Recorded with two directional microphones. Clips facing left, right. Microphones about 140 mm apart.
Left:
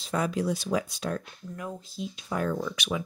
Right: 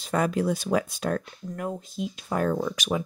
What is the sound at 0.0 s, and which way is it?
Speech, 55° right (ahead or behind).